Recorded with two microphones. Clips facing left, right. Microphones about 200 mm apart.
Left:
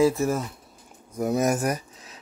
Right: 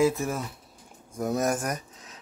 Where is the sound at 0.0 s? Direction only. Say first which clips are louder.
Left 3 dB; centre (ahead or behind).